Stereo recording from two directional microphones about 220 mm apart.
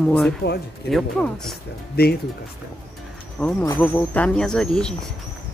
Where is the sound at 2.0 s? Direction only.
45° left (ahead or behind).